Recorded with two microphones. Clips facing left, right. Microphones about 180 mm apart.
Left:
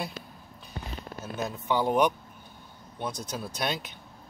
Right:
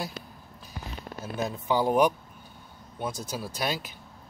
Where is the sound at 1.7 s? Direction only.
10° right (ahead or behind).